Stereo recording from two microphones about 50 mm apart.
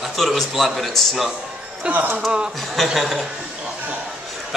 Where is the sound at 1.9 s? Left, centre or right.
Right.